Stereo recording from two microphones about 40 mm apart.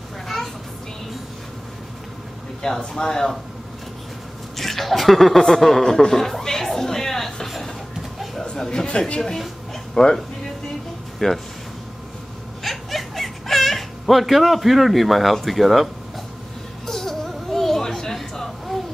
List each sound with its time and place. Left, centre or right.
2.6 s speech: centre
4.6 s speech: centre
8.5 s speech: centre
9.9 s speech: centre
12.6 s a sound: centre
16.8 s music: centre
17.3 s a sound: centre